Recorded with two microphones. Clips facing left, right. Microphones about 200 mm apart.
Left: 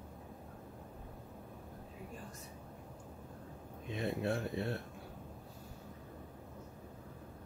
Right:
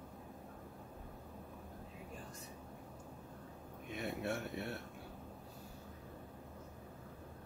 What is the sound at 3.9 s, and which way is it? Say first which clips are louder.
Speech: left 4 dB; 30° left (ahead or behind).